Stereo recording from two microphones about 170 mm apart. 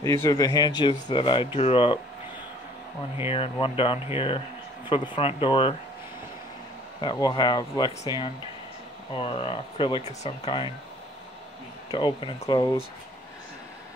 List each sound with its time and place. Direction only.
0.0 s speech: 15° left (ahead or behind); by 2.0 s 35° left (ahead or behind)
3.3 s speech: 35° left (ahead or behind)
7.0 s speech: 25° left (ahead or behind)
11.9 s speech: 30° left (ahead or behind)